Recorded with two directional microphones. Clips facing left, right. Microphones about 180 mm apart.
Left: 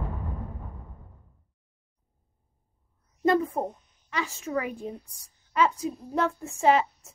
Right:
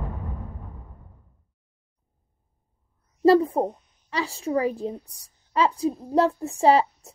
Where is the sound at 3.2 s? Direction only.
35° right (ahead or behind).